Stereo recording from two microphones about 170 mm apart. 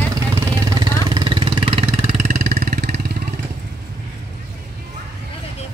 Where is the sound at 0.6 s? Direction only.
25° right (ahead or behind).